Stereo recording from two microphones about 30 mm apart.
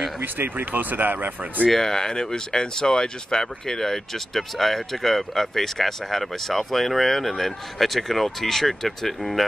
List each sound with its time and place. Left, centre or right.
0.2 s speech: right
1.7 s speech: centre